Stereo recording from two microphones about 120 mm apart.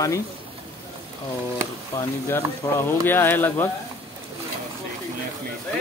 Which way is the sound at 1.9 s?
25° left (ahead or behind).